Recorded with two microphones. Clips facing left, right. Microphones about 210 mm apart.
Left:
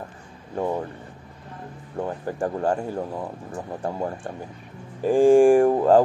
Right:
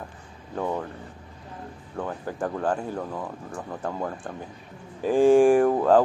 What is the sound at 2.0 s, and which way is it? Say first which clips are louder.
Speech: left 3 dB; 15° left (ahead or behind).